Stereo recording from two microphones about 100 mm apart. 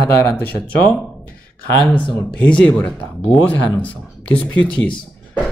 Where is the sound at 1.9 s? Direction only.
5° left (ahead or behind).